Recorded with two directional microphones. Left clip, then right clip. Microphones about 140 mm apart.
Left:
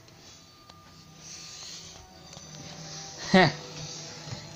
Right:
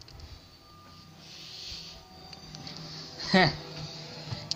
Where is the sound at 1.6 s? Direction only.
20° left (ahead or behind).